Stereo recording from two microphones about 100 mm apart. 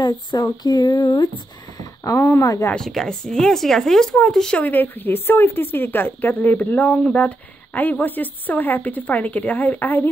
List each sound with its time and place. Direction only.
0.0 s speech: 45° left (ahead or behind)
2.0 s speech: 25° left (ahead or behind)
2.4 s speech: 35° left (ahead or behind)
2.7 s speech: 5° left (ahead or behind)